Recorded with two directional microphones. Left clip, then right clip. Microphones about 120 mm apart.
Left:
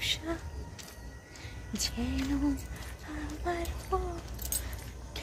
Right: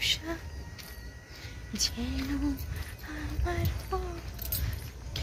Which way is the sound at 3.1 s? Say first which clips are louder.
Left 1 dB; 15° left (ahead or behind).